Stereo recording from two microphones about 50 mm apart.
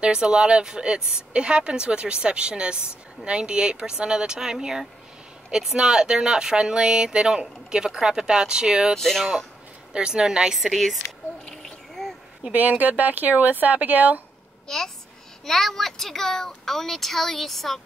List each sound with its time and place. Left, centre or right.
0.0 s speech: centre
8.9 s speech: centre
9.9 s speech: centre
10.5 s speech: centre
12.5 s speech: right
14.7 s a child's voice: centre